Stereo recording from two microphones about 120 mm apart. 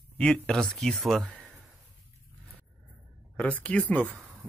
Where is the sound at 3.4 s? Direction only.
10° left (ahead or behind).